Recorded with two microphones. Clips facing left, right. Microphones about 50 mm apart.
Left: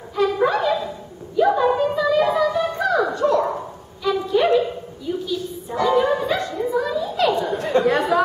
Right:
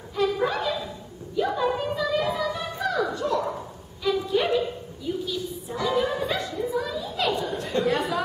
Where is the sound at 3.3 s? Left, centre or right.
Left.